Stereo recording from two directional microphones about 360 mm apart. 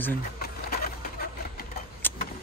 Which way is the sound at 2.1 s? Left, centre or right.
Centre.